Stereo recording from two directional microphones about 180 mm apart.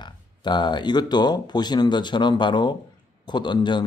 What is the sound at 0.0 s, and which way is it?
Speech, 25° left (ahead or behind).